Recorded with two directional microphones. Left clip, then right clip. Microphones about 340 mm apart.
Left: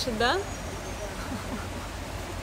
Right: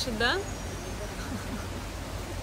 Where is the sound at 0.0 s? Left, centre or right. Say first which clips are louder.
Left 2 dB; centre.